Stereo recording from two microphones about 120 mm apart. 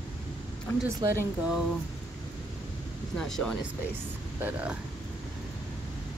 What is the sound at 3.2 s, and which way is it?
Speech, 5° left (ahead or behind).